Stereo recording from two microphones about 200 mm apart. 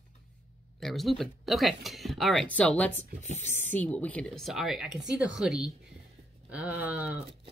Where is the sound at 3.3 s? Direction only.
40° right (ahead or behind).